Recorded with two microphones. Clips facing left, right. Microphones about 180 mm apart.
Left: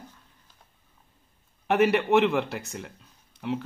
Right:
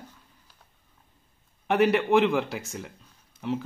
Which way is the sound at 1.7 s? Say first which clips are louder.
Even; centre (ahead or behind).